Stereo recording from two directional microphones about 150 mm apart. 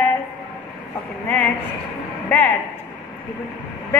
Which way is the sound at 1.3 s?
10° left (ahead or behind).